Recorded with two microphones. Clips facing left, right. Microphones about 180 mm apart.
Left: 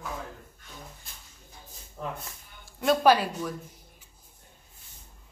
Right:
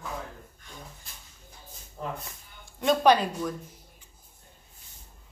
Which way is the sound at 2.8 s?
5° left (ahead or behind).